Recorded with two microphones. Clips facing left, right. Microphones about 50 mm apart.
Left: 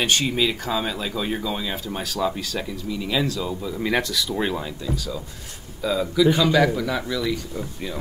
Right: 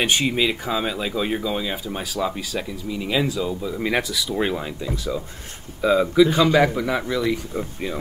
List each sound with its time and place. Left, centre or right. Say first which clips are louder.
0.0 s speech: right 1 dB; centre
4.8 s a man's voice: right 2 dB; right